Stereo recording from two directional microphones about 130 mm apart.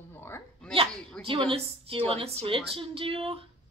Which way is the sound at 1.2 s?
5° left (ahead or behind).